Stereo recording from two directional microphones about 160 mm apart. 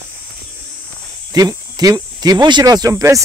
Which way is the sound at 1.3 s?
25° right (ahead or behind).